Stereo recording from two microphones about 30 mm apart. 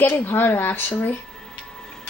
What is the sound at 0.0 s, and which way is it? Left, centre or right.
Speech, left.